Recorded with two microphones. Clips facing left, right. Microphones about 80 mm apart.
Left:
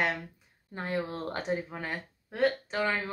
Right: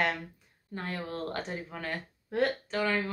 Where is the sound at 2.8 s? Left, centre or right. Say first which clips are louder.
Right 1 dB; centre.